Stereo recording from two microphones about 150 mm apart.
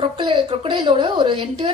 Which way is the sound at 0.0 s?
35° right (ahead or behind).